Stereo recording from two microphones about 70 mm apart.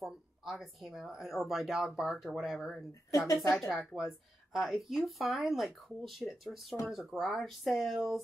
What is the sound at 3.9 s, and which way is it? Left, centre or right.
Speech, centre.